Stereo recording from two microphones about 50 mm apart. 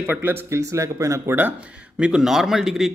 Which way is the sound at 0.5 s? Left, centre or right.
Right.